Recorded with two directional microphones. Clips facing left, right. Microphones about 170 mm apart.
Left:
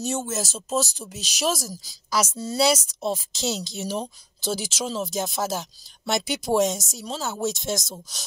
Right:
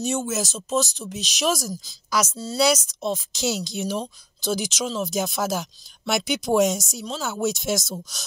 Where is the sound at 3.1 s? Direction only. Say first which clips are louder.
Right 2 dB; centre (ahead or behind).